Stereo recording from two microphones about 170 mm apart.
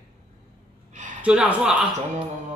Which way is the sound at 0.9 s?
45° right (ahead or behind).